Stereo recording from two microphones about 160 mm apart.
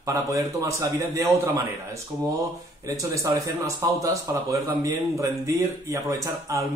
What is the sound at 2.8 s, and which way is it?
Speech, 20° right (ahead or behind).